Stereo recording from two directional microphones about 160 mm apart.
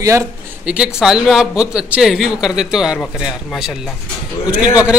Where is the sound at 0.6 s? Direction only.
5° right (ahead or behind).